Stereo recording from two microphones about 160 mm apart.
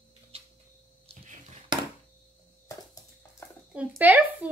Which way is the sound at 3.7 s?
10° right (ahead or behind).